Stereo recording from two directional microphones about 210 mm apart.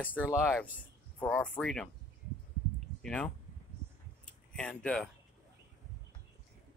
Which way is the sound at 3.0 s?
5° left (ahead or behind).